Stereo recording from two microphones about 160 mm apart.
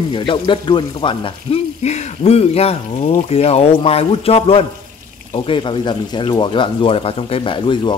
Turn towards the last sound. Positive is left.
turn(degrees=30)  # may be behind; listen again after turning